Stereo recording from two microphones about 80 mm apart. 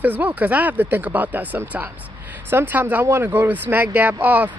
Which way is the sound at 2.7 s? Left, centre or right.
Right.